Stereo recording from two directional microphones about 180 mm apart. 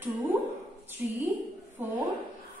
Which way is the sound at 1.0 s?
10° right (ahead or behind).